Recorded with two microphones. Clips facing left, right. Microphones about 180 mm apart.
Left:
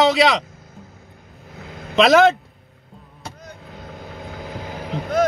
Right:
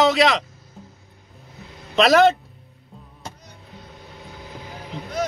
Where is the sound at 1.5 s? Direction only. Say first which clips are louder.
Left 6 dB; 90° left.